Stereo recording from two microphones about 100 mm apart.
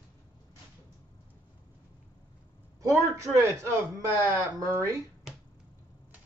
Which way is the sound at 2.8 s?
30° right (ahead or behind).